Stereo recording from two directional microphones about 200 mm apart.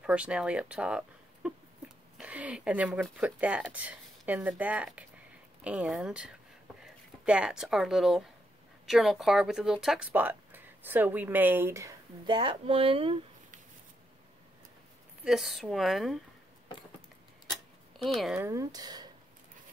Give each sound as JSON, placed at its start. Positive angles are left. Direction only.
{"t": 0.0, "sound": "speech", "side_deg": -5}
{"t": 15.2, "sound": "speech", "side_deg": 0}
{"t": 17.5, "sound": "tick-tock", "side_deg": 0}
{"t": 18.4, "sound": "speech", "side_deg": -15}